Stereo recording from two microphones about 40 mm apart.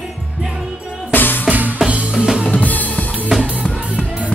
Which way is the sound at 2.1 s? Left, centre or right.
Centre.